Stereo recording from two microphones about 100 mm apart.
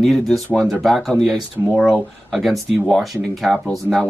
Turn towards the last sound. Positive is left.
turn(degrees=-30)  # may be behind; listen again after turning